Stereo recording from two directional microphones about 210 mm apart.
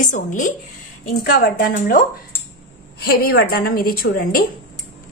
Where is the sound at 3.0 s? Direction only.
45° left (ahead or behind).